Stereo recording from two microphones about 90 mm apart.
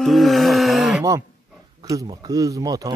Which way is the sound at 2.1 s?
50° right (ahead or behind).